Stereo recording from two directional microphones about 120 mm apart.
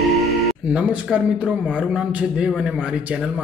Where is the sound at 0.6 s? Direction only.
10° right (ahead or behind).